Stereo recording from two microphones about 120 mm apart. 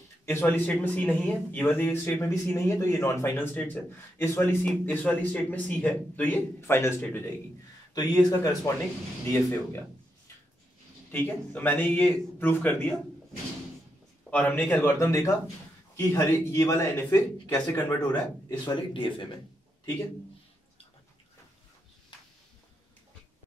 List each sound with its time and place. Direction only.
0.2 s a man's voice: 20° left (ahead or behind)
7.9 s a man's voice: 30° left (ahead or behind)
11.1 s a man's voice: 15° left (ahead or behind)
14.3 s a man's voice: 15° left (ahead or behind)
18.5 s speech: 45° left (ahead or behind)